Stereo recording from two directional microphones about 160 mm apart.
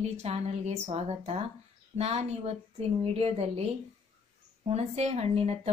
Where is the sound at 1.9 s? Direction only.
40° right (ahead or behind).